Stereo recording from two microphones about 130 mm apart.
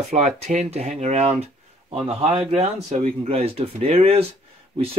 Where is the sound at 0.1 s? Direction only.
65° right (ahead or behind).